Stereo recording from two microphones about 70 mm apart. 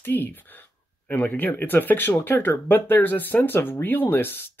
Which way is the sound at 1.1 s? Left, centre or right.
Left.